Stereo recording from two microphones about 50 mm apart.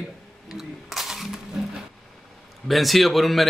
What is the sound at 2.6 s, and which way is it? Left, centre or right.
Speech, centre.